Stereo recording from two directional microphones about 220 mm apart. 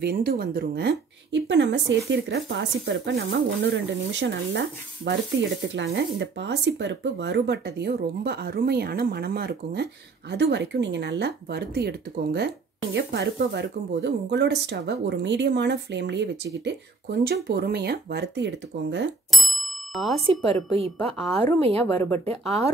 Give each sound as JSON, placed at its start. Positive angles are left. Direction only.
{"t": 0.0, "sound": "a woman's voice", "side_deg": -45}
{"t": 19.3, "sound": "bicycle bell", "side_deg": 0}
{"t": 20.2, "sound": "speech", "side_deg": -25}
{"t": 21.2, "sound": "a woman's voice", "side_deg": 5}